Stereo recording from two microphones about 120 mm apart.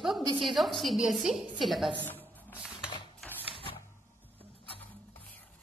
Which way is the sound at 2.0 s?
15° left (ahead or behind).